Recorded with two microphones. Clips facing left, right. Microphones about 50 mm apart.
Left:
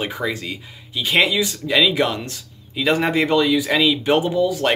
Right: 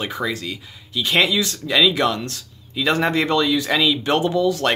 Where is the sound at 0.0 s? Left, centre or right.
Left.